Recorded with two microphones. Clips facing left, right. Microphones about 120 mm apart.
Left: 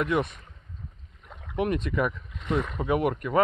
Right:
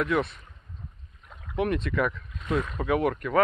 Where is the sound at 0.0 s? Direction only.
5° left (ahead or behind).